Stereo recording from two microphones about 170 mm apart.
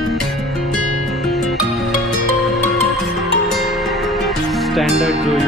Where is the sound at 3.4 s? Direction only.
Centre (ahead or behind).